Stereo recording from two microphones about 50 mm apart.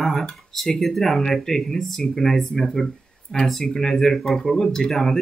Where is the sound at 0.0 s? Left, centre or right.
Centre.